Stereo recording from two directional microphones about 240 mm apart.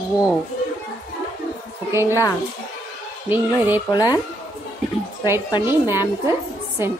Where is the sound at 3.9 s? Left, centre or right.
Centre.